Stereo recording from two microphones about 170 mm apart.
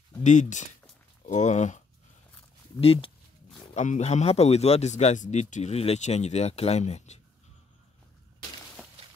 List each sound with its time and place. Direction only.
0.2 s speech: 45° left (ahead or behind)
2.8 s a man's voice: 35° left (ahead or behind)
3.7 s a man's voice: 45° left (ahead or behind)